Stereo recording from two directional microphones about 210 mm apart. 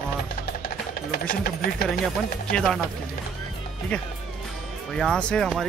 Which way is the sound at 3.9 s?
5° left (ahead or behind).